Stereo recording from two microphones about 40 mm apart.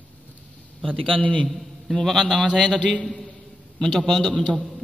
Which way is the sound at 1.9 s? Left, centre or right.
Centre.